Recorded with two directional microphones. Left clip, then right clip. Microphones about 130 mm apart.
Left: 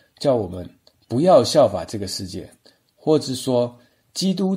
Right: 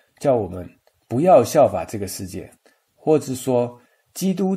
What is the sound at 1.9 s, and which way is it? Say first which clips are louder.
Speech: right 1 dB; 10° left (ahead or behind).